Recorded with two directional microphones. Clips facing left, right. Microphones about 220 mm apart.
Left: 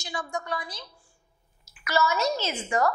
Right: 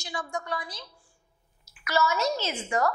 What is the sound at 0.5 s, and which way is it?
Speech, 10° left (ahead or behind).